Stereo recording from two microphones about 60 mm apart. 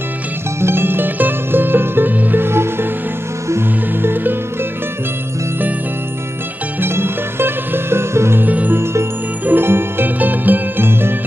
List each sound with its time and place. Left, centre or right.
0.6 s music: right
6.8 s music: right
8.4 s music: right